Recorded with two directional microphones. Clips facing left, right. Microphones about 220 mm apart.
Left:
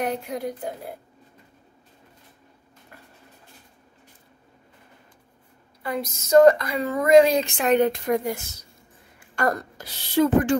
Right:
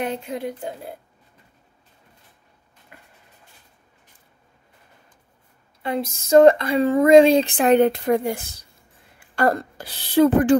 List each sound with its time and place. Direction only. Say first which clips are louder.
0.0 s speech: right 1 dB; 25° right (ahead or behind)
5.8 s a woman's voice: right 3 dB; 25° right (ahead or behind)